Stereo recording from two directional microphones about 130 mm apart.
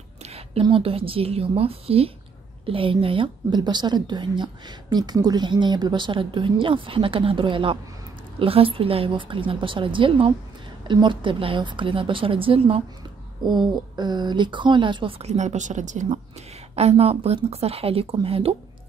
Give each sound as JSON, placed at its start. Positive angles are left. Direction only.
{"t": 0.2, "sound": "a woman's voice", "side_deg": -45}
{"t": 13.9, "sound": "a woman's voice", "side_deg": -35}
{"t": 16.7, "sound": "a woman's voice", "side_deg": -55}